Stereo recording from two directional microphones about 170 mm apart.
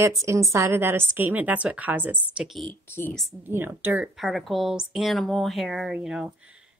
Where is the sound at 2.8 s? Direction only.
10° left (ahead or behind).